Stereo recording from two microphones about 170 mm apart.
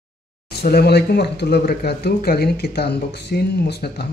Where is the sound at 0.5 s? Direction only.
70° left (ahead or behind).